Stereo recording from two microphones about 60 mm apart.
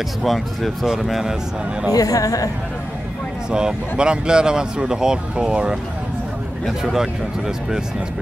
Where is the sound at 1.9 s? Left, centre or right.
Left.